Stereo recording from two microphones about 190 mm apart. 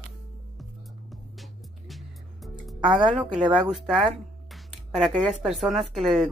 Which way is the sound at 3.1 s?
5° right (ahead or behind).